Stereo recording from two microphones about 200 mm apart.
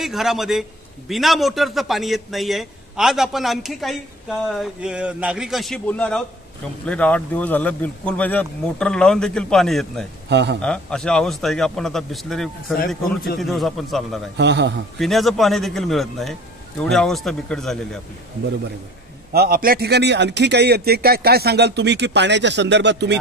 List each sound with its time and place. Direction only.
0.0 s a man's voice: centre (ahead or behind)
10.3 s a man's voice: 60° right (ahead or behind)
10.6 s a man's voice: 5° left (ahead or behind)
14.3 s a man's voice: 60° right (ahead or behind)
15.0 s a man's voice: centre (ahead or behind)
19.3 s a man's voice: 50° right (ahead or behind)